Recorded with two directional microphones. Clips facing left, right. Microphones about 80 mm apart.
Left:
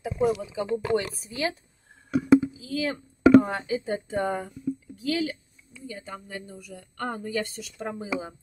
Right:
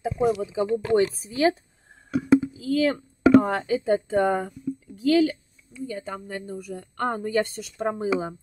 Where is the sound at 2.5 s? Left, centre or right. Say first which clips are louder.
Right 7 dB; right.